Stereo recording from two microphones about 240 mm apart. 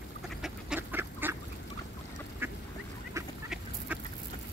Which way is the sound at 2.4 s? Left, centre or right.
Centre.